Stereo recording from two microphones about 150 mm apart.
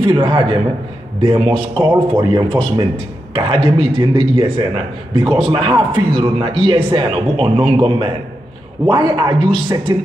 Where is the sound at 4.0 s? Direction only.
35° right (ahead or behind).